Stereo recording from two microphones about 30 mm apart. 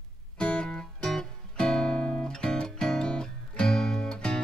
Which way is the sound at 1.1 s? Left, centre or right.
Left.